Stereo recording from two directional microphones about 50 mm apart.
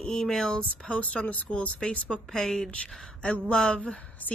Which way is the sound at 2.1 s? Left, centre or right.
Centre.